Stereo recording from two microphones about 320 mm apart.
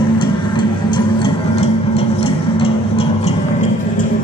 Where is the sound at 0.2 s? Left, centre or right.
Centre.